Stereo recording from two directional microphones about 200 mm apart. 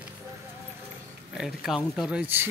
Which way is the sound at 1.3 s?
Centre (ahead or behind).